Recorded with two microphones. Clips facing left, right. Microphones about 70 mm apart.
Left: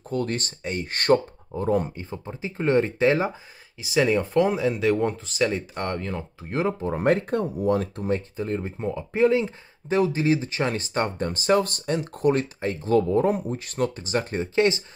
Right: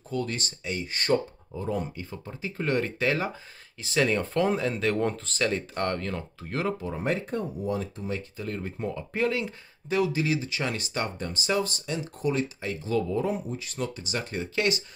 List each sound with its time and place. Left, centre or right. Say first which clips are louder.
0.1 s speech: left 4 dB; left
2.0 s speech: left 4 dB; left
3.8 s speech: left 4 dB; centre
7.0 s speech: left 9 dB; left
8.5 s speech: left 4 dB; left